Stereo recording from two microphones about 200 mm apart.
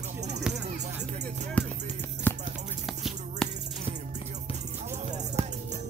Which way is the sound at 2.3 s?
10° left (ahead or behind).